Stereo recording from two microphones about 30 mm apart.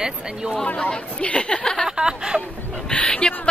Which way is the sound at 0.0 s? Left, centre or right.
Right.